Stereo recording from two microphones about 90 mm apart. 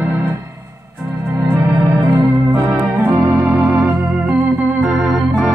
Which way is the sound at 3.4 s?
10° right (ahead or behind).